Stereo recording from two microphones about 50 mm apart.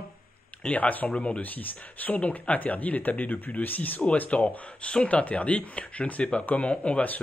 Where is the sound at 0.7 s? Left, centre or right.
Left.